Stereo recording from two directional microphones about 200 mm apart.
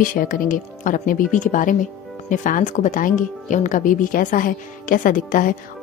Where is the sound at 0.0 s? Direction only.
45° left (ahead or behind).